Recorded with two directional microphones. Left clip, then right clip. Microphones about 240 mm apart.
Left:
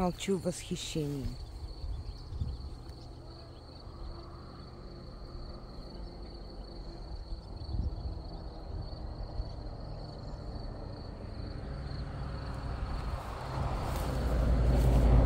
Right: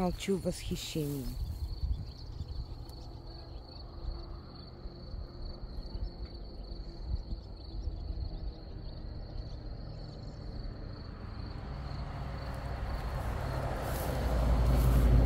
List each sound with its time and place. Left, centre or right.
0.0 s speech: centre
11.7 s vehicle: right